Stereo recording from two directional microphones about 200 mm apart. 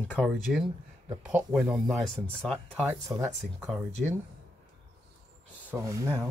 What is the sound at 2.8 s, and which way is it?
Speech, 15° right (ahead or behind).